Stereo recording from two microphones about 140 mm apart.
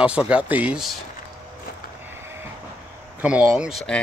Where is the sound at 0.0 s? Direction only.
10° right (ahead or behind).